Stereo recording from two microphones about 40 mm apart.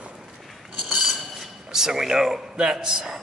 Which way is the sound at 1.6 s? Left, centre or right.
Centre.